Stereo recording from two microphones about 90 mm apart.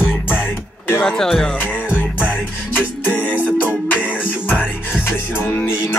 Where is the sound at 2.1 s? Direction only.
20° left (ahead or behind).